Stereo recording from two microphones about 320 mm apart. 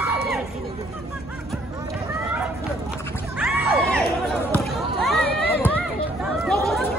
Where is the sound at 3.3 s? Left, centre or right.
Centre.